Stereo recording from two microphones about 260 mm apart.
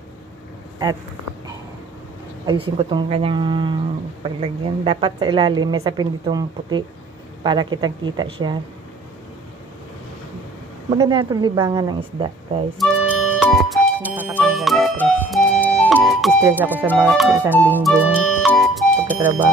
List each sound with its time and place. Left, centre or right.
2.4 s speech: centre
11.0 s speech: centre
12.7 s speech: centre
14.3 s music: centre
15.9 s speech: centre
16.9 s music: centre
18.1 s music: centre